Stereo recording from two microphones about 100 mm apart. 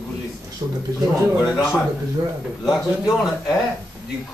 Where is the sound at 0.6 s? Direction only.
50° right (ahead or behind).